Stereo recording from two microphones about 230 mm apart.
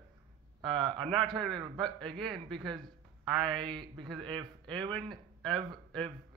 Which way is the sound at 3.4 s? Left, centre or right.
Right.